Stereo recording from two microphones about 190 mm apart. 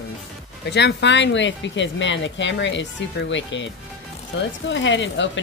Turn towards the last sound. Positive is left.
turn(degrees=75)  # may be behind; listen again after turning